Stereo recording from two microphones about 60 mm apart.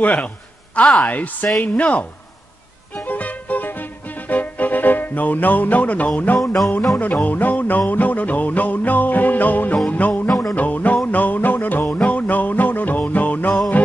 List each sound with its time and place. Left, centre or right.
0.0 s music: left